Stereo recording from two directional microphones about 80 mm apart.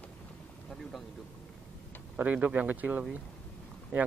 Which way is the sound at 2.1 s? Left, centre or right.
Centre.